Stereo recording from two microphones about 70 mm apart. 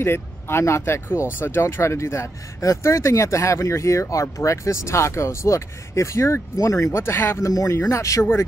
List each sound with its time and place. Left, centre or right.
0.0 s speech: left